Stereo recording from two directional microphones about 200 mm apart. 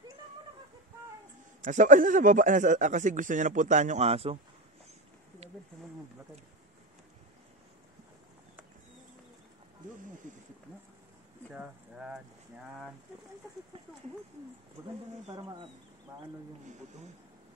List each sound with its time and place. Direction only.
1.6 s a man's voice: 40° right (ahead or behind)
11.5 s speech: 5° right (ahead or behind)
15.3 s speech: 20° right (ahead or behind)